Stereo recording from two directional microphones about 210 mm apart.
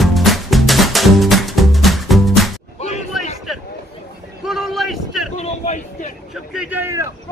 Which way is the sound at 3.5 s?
Centre (ahead or behind).